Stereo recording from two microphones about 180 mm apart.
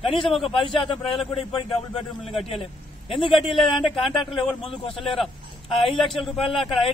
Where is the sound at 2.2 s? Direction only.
30° left (ahead or behind).